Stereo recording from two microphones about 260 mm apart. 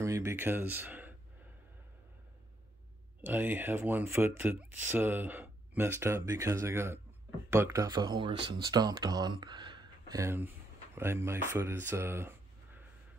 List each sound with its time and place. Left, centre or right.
0.0 s speech: centre
3.2 s speech: centre